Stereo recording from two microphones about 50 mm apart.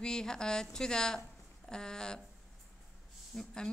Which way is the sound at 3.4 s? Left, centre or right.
Centre.